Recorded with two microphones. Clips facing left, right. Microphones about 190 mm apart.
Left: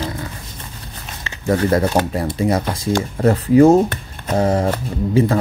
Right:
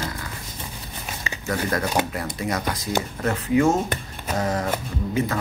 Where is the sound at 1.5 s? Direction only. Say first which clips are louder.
Left 9 dB; 25° left (ahead or behind).